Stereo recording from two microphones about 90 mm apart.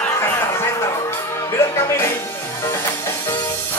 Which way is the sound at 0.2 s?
30° left (ahead or behind).